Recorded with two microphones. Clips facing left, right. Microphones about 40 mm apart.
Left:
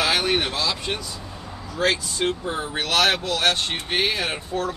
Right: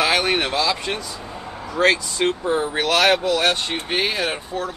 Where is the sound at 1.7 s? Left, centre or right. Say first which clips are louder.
Right 5 dB; right.